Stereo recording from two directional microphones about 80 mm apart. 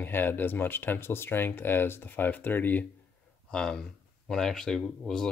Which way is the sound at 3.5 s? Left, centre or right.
Centre.